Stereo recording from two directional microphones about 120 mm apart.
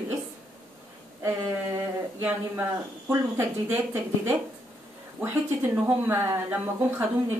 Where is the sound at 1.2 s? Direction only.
20° right (ahead or behind).